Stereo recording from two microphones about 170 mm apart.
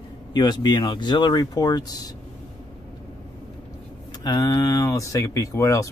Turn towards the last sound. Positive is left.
turn(degrees=20)  # may be behind; listen again after turning